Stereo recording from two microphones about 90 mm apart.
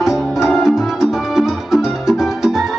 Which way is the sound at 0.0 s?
5° right (ahead or behind).